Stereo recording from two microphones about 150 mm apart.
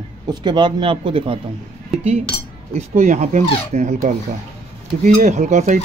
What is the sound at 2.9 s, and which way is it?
Speech, 50° right (ahead or behind).